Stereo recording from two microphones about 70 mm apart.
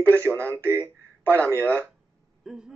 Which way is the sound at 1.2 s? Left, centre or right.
Left.